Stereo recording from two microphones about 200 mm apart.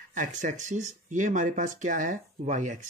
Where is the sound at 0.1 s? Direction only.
40° right (ahead or behind).